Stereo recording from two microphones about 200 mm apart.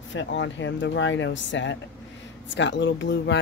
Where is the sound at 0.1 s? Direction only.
65° left (ahead or behind).